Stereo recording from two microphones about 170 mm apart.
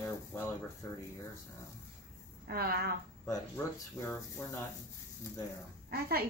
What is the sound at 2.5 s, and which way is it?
Speech, 65° right (ahead or behind).